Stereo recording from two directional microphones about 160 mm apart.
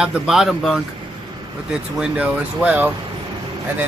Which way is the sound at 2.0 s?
5° right (ahead or behind).